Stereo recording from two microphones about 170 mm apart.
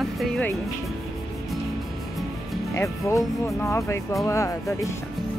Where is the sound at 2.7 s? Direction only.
15° left (ahead or behind).